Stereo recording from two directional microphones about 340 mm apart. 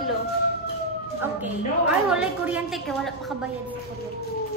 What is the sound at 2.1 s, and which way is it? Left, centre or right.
A woman's voice, centre.